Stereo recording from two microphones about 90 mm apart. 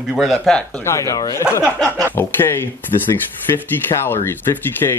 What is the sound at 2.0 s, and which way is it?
A man's voice, 25° left (ahead or behind).